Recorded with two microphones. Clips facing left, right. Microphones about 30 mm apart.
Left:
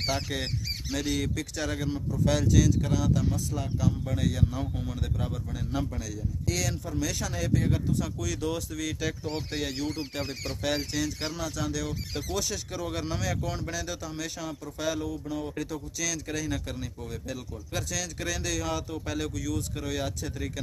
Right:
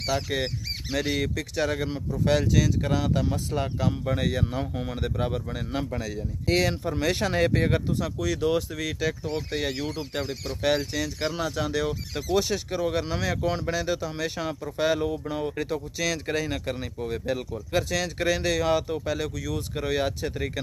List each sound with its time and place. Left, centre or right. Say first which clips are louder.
0.0 s speech: right 4 dB; centre
0.9 s speech: right 3 dB; right
8.0 s speech: right 5 dB; right
11.3 s speech: right 5 dB; right
19.0 s speech: right 3 dB; centre
19.5 s speech: right 5 dB; right